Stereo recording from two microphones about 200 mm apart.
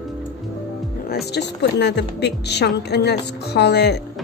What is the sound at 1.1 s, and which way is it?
A woman's voice, 55° left (ahead or behind).